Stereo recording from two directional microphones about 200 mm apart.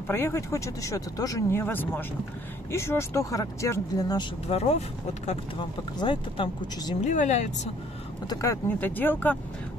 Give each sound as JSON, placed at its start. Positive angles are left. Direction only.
{"t": 0.1, "sound": "speech", "side_deg": 10}
{"t": 7.1, "sound": "speech", "side_deg": 35}
{"t": 8.3, "sound": "speech", "side_deg": 15}